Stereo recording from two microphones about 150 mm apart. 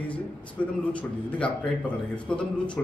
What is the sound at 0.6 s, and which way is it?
Speech, 5° left (ahead or behind).